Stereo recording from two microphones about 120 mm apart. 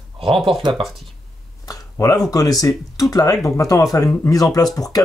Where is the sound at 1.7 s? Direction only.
30° left (ahead or behind).